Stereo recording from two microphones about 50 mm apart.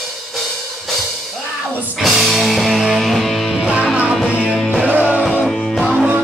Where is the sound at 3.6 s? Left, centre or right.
Centre.